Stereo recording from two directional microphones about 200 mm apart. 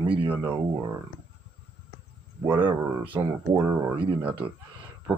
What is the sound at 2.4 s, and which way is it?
Speech, 25° right (ahead or behind).